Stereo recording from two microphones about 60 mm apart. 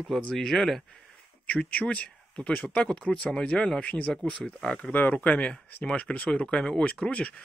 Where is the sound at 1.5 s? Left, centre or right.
Left.